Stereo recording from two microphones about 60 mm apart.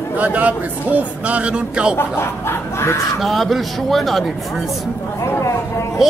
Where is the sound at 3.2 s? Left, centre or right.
Centre.